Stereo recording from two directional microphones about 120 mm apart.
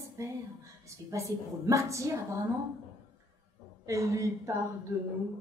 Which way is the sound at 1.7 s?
25° right (ahead or behind).